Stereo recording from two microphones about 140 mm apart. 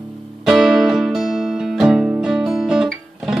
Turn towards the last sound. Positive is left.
turn(degrees=-5)  # may be behind; listen again after turning